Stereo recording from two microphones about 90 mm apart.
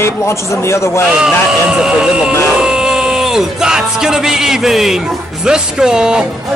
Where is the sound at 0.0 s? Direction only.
30° left (ahead or behind).